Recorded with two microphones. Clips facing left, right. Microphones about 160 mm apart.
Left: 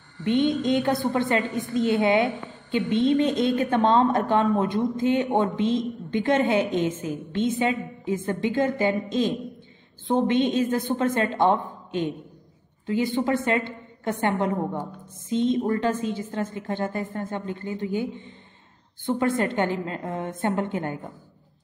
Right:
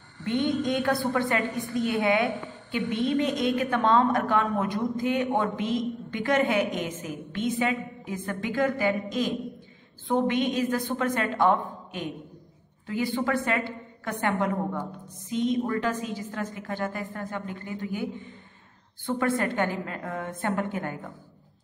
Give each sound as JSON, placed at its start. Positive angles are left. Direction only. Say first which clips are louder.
{"t": 0.2, "sound": "a woman's voice", "louder": "left 4 dB", "side_deg": 20}
{"t": 19.0, "sound": "a woman's voice", "louder": "left 3 dB", "side_deg": 20}